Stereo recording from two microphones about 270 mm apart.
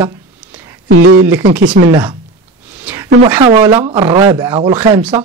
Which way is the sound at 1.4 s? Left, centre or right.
Right.